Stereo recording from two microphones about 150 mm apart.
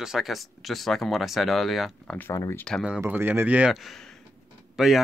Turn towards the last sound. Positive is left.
turn(degrees=0)  # may be behind; listen again after turning